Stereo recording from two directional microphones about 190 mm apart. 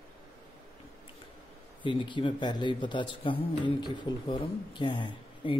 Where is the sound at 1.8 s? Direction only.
25° left (ahead or behind).